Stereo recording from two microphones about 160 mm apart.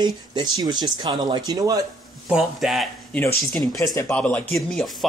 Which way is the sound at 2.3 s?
Centre (ahead or behind).